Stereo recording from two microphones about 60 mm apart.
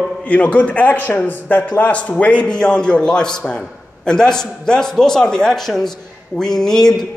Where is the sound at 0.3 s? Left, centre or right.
Left.